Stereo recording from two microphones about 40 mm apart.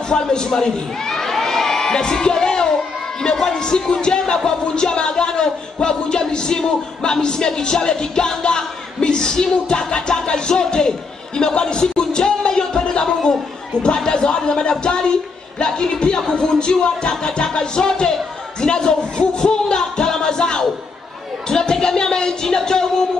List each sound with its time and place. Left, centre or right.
0.1 s crowd: centre
3.3 s speech: centre
11.3 s music: centre
13.8 s speech: centre